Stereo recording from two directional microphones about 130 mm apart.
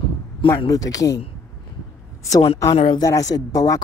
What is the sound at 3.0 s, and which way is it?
Speech, 25° left (ahead or behind).